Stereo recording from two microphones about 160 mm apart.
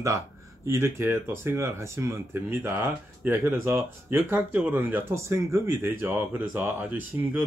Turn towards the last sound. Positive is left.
turn(degrees=-10)  # may be behind; listen again after turning